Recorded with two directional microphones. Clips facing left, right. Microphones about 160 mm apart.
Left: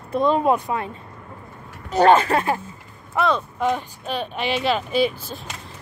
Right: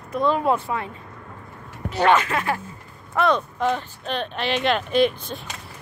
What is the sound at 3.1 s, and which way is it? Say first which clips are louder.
Speech: right 1 dB; 5° left (ahead or behind).